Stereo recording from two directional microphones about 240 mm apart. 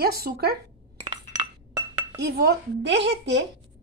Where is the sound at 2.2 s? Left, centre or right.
Right.